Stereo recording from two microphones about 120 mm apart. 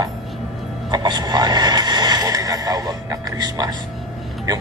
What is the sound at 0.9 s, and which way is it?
A man's voice, 35° right (ahead or behind).